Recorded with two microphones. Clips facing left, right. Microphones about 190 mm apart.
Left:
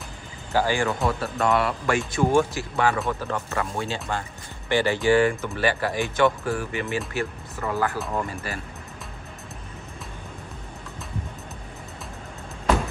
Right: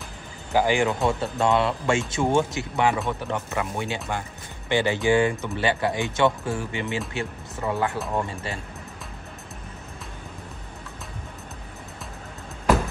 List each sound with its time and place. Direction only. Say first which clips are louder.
0.5 s speech: right 2 dB; 15° right (ahead or behind)